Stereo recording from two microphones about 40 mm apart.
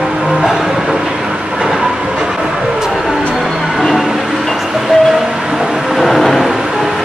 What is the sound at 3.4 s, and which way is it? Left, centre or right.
Music, centre.